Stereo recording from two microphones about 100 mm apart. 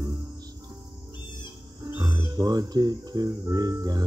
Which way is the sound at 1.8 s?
45° right (ahead or behind).